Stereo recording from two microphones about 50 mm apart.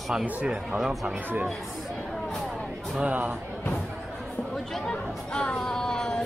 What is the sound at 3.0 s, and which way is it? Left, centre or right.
Speech, right.